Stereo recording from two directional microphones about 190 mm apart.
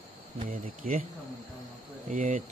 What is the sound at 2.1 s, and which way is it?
Speech, 40° right (ahead or behind).